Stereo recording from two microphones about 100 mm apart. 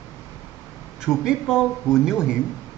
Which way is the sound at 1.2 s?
5° right (ahead or behind).